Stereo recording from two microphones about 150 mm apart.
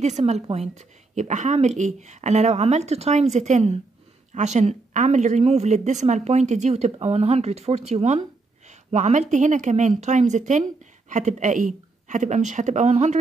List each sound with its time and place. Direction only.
0.0 s speech: 50° right (ahead or behind)